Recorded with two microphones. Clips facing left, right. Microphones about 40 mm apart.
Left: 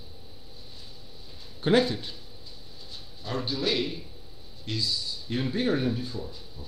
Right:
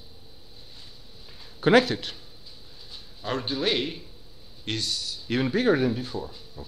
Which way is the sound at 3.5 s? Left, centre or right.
Right.